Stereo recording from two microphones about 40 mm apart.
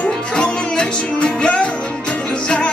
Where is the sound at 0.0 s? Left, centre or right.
Left.